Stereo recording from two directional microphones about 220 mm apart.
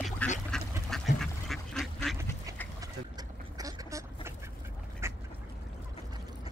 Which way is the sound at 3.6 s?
15° right (ahead or behind).